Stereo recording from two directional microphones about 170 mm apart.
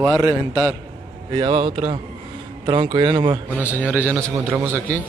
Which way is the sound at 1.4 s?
25° right (ahead or behind).